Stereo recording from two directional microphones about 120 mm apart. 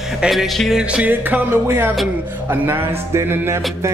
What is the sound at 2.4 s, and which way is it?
Speech, 20° right (ahead or behind).